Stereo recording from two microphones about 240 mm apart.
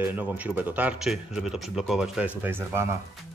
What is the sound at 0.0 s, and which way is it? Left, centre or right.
Speech, centre.